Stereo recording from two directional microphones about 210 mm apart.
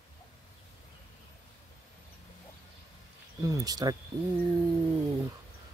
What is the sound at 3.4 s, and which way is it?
Speech, 15° right (ahead or behind).